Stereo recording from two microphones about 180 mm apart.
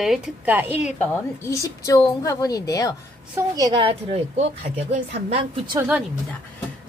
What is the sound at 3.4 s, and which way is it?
Speech, 15° right (ahead or behind).